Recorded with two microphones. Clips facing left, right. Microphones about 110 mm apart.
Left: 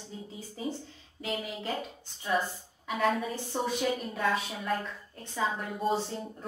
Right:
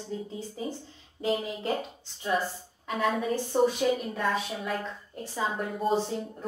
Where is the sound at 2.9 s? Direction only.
Centre (ahead or behind).